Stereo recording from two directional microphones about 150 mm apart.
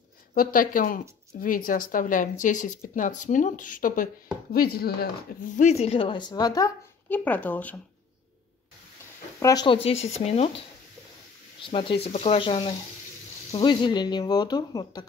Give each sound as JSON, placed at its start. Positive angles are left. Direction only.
{"t": 0.3, "sound": "speech", "side_deg": 70}
{"t": 4.5, "sound": "speech", "side_deg": 90}
{"t": 5.6, "sound": "speech", "side_deg": 45}
{"t": 7.1, "sound": "speech", "side_deg": 10}
{"t": 9.4, "sound": "speech", "side_deg": 25}
{"t": 9.8, "sound": "speech", "side_deg": 45}
{"t": 11.6, "sound": "speech", "side_deg": 35}
{"t": 12.1, "sound": "speech", "side_deg": 45}